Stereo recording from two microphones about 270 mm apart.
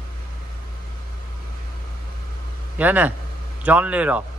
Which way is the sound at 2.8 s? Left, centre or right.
Centre.